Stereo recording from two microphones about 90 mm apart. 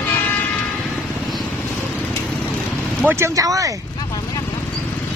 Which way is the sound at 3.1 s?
35° right (ahead or behind).